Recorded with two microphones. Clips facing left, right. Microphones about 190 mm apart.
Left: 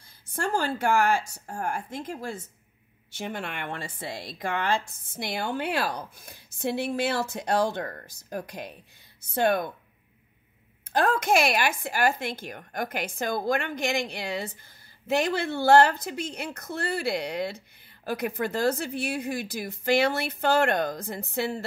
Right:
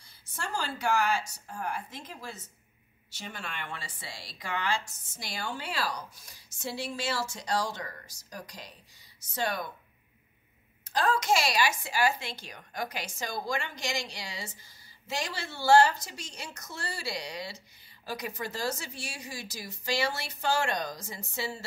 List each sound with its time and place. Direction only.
0.3 s a woman's voice: 50° left (ahead or behind)
10.9 s speech: 55° left (ahead or behind)